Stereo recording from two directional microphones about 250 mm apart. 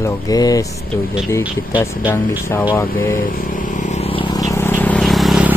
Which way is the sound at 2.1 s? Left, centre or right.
Centre.